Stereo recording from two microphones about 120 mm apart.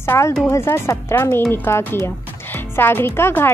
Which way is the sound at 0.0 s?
20° left (ahead or behind).